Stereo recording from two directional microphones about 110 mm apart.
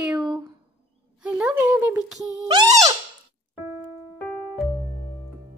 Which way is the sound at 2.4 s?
45° right (ahead or behind).